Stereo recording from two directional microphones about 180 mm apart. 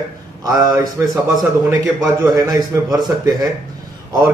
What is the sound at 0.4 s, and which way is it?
Speech, 20° right (ahead or behind).